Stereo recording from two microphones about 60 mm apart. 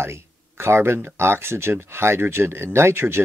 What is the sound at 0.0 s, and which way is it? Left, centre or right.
Speech, right.